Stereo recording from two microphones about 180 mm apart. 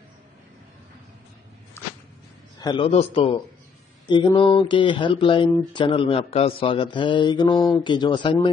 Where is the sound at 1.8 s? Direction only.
15° left (ahead or behind).